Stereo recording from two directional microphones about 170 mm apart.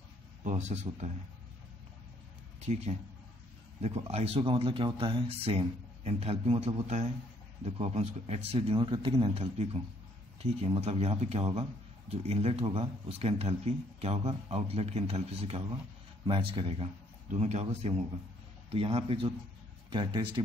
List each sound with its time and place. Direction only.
0.4 s a man's voice: 45° right (ahead or behind)
2.6 s a man's voice: 40° right (ahead or behind)